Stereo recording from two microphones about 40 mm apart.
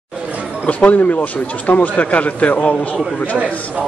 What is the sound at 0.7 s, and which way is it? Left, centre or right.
Speech, left.